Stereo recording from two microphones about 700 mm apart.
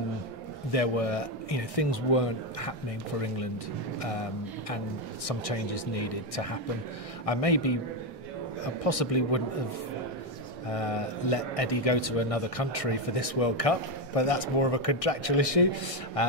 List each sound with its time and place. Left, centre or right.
0.7 s speech: left
4.0 s speech: left
8.8 s speech: left
10.7 s a man's voice: left